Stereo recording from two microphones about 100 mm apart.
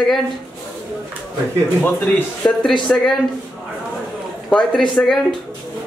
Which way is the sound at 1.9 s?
15° left (ahead or behind).